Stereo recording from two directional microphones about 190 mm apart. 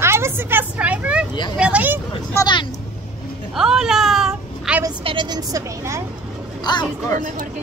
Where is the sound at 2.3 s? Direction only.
20° left (ahead or behind).